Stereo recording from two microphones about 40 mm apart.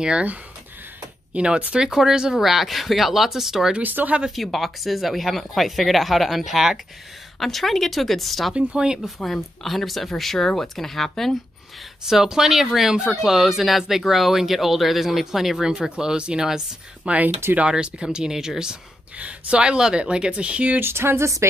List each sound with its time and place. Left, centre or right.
1.3 s speech: right
2.4 s speech: centre
3.8 s speech: right
4.4 s speech: centre
7.3 s speech: centre
8.5 s speech: right
9.2 s speech: centre
12.1 s speech: centre
17.1 s speech: right; by 18.8 s centre
19.1 s speech: right
20.8 s speech: right